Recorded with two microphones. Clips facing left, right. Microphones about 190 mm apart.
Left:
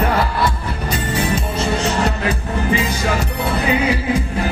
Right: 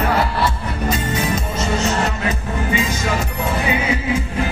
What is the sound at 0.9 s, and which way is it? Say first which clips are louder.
Music: left 2 dB; 30° left (ahead or behind).